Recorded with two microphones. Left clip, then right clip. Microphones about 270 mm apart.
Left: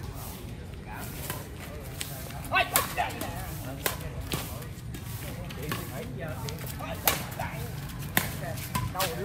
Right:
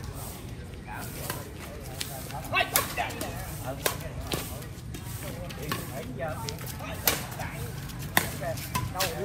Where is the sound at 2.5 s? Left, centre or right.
Centre.